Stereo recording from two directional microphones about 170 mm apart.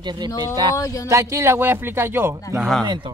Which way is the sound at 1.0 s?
15° right (ahead or behind).